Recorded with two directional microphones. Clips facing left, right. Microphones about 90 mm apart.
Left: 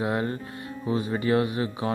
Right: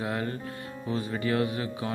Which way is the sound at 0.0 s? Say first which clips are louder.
Left 4 dB; 25° left (ahead or behind).